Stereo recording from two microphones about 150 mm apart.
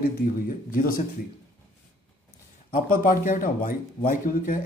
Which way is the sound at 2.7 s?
65° left (ahead or behind).